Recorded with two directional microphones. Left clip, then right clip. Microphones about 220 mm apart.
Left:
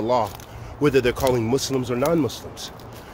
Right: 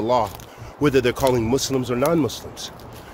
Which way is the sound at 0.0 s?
10° right (ahead or behind).